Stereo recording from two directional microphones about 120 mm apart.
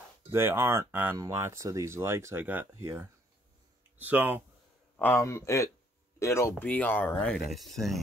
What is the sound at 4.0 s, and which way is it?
Speech, 15° right (ahead or behind).